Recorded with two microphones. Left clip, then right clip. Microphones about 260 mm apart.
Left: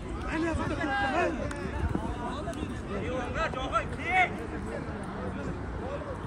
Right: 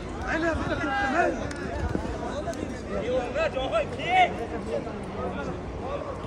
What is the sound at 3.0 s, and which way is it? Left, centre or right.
Speech, centre.